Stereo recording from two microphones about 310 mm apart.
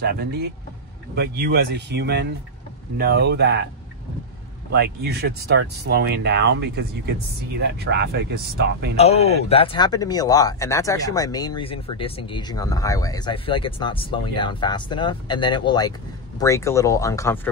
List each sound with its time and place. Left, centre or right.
0.0 s speech: right
4.7 s speech: right
8.9 s speech: centre